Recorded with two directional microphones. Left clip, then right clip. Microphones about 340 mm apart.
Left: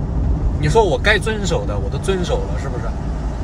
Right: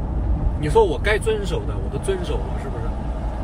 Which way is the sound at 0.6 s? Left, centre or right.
Right.